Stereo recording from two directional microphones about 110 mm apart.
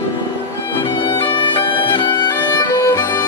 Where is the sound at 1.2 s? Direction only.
50° left (ahead or behind).